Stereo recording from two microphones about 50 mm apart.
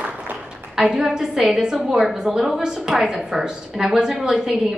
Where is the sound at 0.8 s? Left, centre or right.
Centre.